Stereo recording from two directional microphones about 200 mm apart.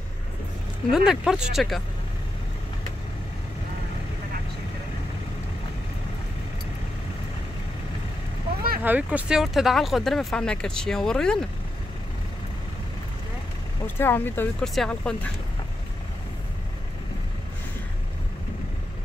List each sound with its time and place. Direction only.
0.9 s speech: 5° right (ahead or behind)
8.8 s speech: 5° right (ahead or behind)
13.8 s speech: 10° left (ahead or behind)